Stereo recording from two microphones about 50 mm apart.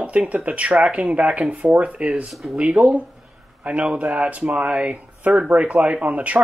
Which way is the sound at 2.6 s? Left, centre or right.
Right.